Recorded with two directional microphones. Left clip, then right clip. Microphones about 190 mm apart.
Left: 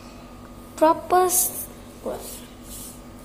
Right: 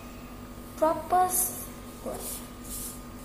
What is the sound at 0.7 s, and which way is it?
Speech, 50° left (ahead or behind).